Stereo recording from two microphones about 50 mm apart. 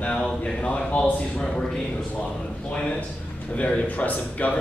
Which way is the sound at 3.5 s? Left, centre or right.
Left.